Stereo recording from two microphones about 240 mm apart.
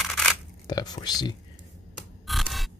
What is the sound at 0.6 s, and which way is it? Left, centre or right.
Speech, centre.